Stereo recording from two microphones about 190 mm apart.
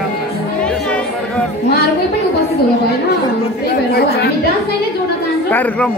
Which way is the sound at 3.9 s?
55° left (ahead or behind).